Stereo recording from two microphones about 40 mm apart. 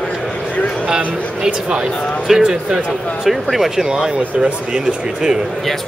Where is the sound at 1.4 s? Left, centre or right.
Right.